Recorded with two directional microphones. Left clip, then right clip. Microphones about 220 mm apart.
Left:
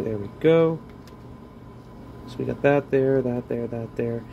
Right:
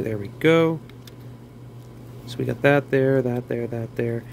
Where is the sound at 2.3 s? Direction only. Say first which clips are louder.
Right 2 dB; 25° right (ahead or behind).